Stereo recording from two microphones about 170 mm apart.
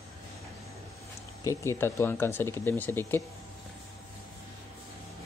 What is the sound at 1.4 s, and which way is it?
Speech, 15° left (ahead or behind).